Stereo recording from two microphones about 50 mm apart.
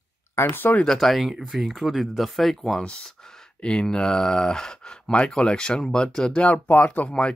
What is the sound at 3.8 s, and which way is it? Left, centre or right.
Speech, centre.